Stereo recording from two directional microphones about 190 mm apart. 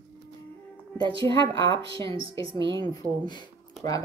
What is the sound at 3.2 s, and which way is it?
Speech, 25° left (ahead or behind).